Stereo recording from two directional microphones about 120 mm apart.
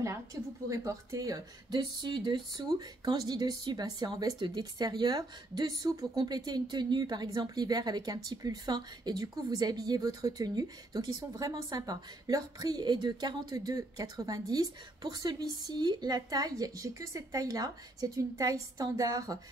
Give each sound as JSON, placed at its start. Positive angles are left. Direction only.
{"t": 0.0, "sound": "a woman's voice", "side_deg": -25}